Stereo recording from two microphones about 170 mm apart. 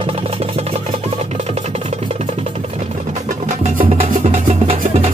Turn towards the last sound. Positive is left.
turn(degrees=-35)  # may be behind; listen again after turning